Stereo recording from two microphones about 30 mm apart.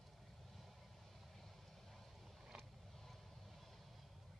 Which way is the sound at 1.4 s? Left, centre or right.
Centre.